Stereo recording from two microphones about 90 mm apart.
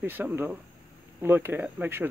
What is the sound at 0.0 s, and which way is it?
Speech, 25° right (ahead or behind).